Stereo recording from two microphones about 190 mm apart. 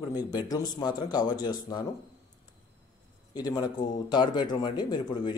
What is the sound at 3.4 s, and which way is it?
Speech, 20° left (ahead or behind).